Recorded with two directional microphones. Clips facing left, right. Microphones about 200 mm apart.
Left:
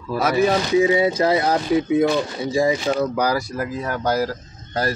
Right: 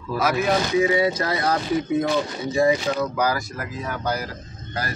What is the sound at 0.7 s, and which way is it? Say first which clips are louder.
Speech: left 4 dB; 25° left (ahead or behind).